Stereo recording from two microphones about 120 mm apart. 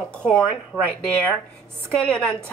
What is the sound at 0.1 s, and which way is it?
A woman's voice, 10° left (ahead or behind).